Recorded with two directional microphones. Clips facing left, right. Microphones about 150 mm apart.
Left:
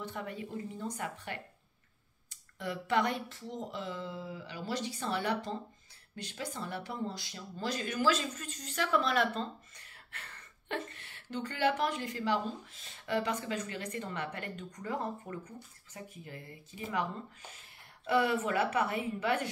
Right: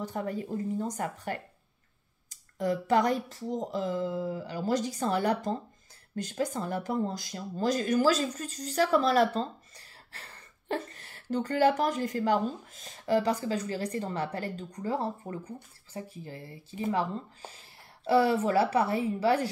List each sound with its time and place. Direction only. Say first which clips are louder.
0.0 s speech: right 7 dB; 40° right (ahead or behind)